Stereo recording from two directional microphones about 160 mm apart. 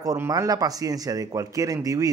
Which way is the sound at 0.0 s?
25° right (ahead or behind).